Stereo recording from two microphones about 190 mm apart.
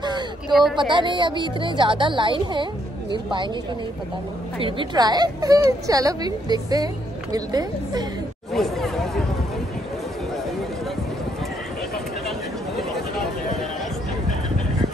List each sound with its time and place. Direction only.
0.5 s speech: centre (ahead or behind)
0.7 s speech: 25° right (ahead or behind)
4.6 s speech: 25° right (ahead or behind)
8.5 s chatter: centre (ahead or behind)